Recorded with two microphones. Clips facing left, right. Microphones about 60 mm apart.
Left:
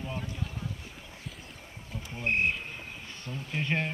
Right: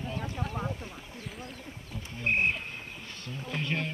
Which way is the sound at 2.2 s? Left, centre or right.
Centre.